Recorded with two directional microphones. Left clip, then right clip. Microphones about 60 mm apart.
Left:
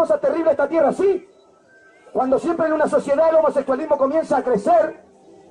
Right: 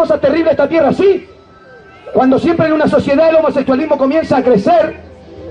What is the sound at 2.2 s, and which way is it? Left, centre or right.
A man's voice, centre.